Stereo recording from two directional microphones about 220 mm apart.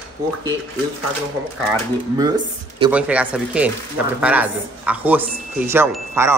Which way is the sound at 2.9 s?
5° right (ahead or behind).